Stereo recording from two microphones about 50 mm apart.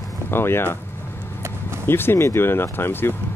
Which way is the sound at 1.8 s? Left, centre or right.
Left.